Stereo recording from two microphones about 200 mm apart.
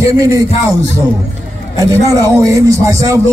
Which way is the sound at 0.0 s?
15° right (ahead or behind).